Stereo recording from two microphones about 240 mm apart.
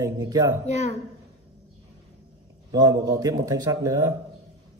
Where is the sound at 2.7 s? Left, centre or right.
Centre.